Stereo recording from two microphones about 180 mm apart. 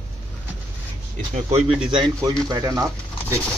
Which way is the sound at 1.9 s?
25° right (ahead or behind).